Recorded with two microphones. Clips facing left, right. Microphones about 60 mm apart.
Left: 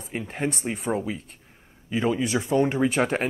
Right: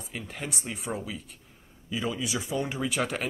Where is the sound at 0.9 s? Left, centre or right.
Left.